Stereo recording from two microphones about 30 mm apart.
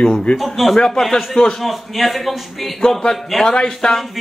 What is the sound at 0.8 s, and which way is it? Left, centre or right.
Speech, centre.